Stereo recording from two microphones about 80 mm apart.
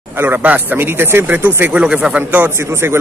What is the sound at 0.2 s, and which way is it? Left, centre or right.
A man's voice, right.